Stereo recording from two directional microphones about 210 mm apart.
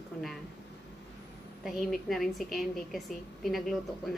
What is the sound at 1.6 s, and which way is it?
A woman's voice, centre (ahead or behind).